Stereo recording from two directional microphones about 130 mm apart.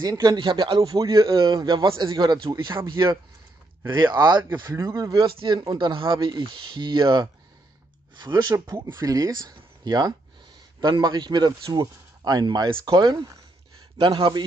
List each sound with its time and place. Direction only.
0.0 s speech: 30° right (ahead or behind)
3.9 s speech: 35° right (ahead or behind)
13.9 s speech: 40° right (ahead or behind)